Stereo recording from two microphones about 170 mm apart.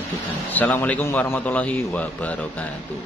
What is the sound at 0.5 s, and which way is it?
Speech, 10° left (ahead or behind).